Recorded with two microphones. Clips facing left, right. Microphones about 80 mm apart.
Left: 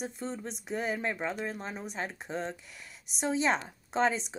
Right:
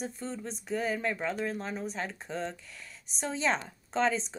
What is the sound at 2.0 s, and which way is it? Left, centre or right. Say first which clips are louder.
A woman's voice: even; left.